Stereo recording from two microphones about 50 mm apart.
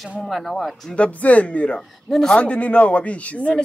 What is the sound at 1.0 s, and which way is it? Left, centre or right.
Speech, left.